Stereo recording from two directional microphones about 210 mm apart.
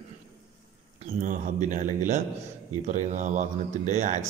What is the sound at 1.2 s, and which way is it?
Speech, 40° right (ahead or behind).